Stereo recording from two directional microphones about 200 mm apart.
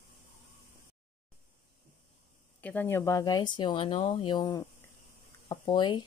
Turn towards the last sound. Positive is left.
turn(degrees=20)  # may be behind; listen again after turning